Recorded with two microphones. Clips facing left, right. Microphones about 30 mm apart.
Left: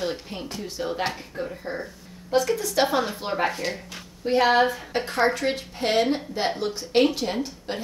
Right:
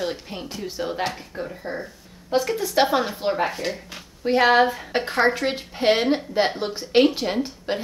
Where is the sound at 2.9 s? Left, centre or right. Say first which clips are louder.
Right 3 dB; centre.